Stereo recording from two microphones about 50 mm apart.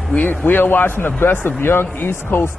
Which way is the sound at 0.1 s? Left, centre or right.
Left.